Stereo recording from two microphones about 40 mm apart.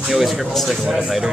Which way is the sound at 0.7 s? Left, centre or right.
Centre.